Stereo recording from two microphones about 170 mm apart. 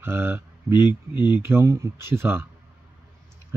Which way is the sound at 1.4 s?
15° right (ahead or behind).